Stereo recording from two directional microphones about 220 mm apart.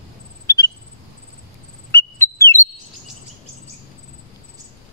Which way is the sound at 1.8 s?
10° left (ahead or behind).